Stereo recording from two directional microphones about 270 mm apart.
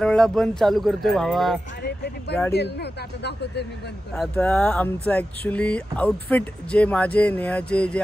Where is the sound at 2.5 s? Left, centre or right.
Left.